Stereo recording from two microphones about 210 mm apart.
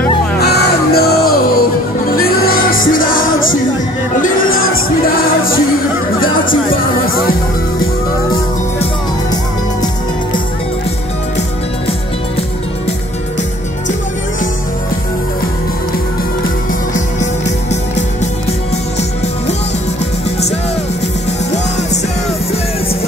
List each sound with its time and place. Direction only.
0.4 s music: 50° left (ahead or behind)